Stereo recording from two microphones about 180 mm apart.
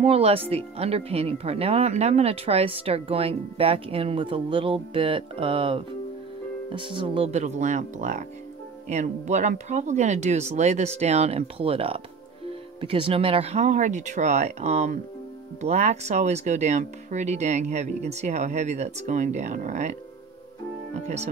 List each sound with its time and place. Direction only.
0.0 s speech: 35° right (ahead or behind)